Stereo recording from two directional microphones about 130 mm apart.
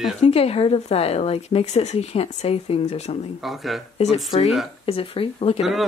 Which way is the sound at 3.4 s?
Centre (ahead or behind).